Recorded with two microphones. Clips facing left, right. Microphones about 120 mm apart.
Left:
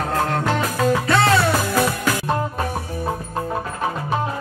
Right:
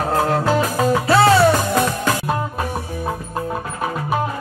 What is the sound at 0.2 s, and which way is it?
Music, 5° right (ahead or behind).